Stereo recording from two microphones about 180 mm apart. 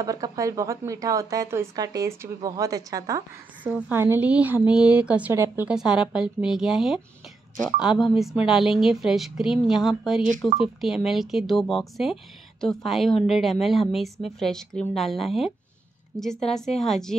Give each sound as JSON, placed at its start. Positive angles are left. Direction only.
{"t": 0.0, "sound": "a woman's voice", "side_deg": -20}